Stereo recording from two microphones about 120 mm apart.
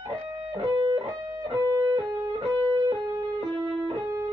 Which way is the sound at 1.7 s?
30° right (ahead or behind).